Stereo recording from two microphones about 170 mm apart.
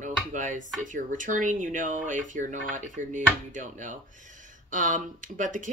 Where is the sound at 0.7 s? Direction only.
50° right (ahead or behind).